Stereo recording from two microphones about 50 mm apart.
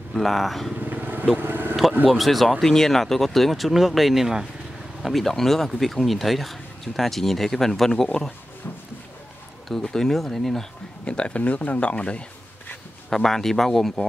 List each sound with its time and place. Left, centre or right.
0.1 s speech: centre
0.7 s vehicle: right
2.0 s speech: centre
9.8 s speech: centre
11.1 s speech: left
13.1 s speech: centre